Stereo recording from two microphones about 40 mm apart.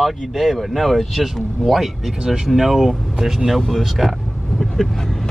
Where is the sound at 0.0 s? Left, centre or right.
Centre.